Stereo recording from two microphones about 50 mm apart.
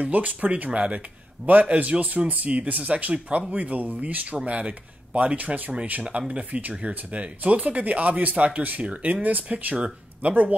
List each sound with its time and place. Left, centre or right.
0.0 s a man's voice: right
4.4 s a man's voice: right